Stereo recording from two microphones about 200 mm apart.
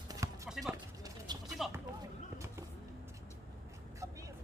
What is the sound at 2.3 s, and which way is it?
Vehicle, 15° right (ahead or behind).